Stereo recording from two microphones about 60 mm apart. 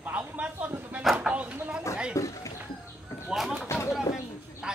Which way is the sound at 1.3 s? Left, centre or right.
Right.